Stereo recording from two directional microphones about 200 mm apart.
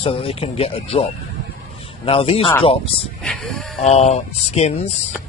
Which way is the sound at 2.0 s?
30° left (ahead or behind).